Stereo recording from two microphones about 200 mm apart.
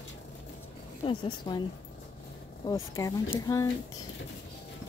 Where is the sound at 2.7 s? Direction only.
15° left (ahead or behind).